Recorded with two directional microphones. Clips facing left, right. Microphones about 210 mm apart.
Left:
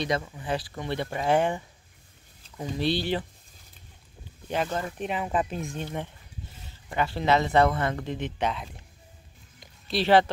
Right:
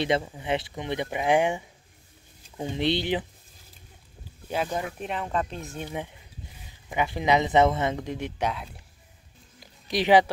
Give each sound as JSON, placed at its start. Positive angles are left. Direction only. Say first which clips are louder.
{"t": 0.0, "sound": "speech", "louder": "right 3 dB", "side_deg": -25}
{"t": 2.5, "sound": "speech", "louder": "right 1 dB", "side_deg": -25}
{"t": 4.5, "sound": "speech", "louder": "even", "side_deg": -10}
{"t": 4.9, "sound": "speech", "louder": "left 2 dB", "side_deg": 0}
{"t": 5.7, "sound": "speech", "louder": "even", "side_deg": -10}
{"t": 9.8, "sound": "speech", "louder": "right 1 dB", "side_deg": -15}